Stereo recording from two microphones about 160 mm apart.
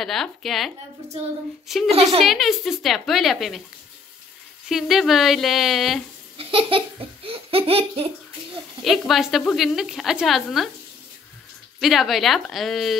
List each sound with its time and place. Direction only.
0.0 s speech: centre (ahead or behind)
1.9 s speech: 40° right (ahead or behind)
2.2 s speech: centre (ahead or behind)
4.6 s speech: centre (ahead or behind)
6.3 s laughter: 35° right (ahead or behind)
8.8 s speech: centre (ahead or behind)
11.8 s speech: centre (ahead or behind)